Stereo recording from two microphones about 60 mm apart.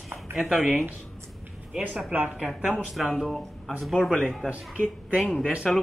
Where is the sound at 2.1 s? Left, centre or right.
Right.